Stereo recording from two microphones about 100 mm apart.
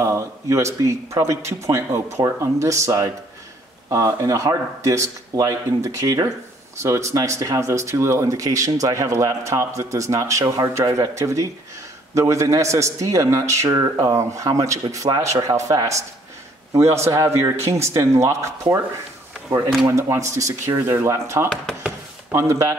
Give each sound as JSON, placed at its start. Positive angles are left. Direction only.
{"t": 0.0, "sound": "speech", "side_deg": -30}
{"t": 19.9, "sound": "speech", "side_deg": -30}
{"t": 21.7, "sound": "speech", "side_deg": 5}
{"t": 22.3, "sound": "speech", "side_deg": -30}